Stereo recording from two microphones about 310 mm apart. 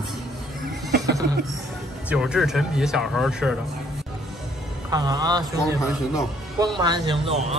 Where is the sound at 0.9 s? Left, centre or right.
Right.